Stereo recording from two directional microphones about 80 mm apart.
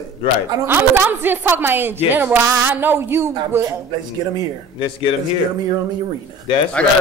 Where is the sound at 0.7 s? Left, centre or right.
Right.